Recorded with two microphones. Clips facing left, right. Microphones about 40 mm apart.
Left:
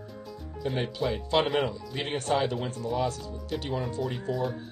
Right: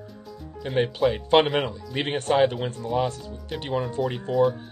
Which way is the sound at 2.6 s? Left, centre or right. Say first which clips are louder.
Right 3 dB; right.